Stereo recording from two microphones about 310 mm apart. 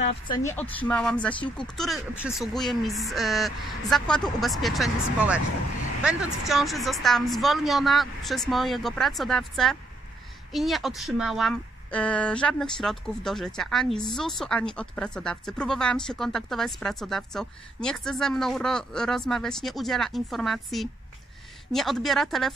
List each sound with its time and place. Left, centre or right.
0.0 s speech: left
0.5 s a woman's voice: centre